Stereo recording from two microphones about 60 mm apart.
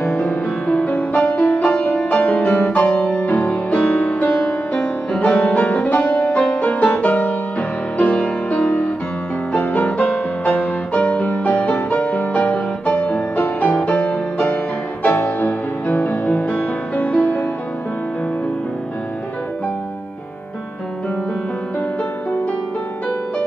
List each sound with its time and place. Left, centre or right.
0.2 s music: left